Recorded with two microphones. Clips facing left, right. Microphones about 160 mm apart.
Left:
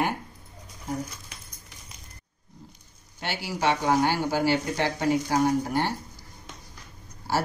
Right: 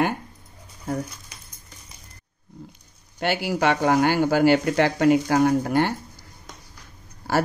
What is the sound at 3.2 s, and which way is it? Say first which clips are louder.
Speech: right 7 dB; 60° right (ahead or behind).